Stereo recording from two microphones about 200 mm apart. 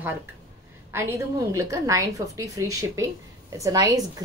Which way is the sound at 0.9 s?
15° right (ahead or behind).